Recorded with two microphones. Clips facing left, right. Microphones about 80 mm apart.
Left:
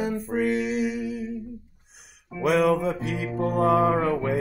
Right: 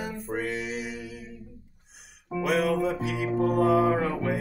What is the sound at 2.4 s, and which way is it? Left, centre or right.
Music, left.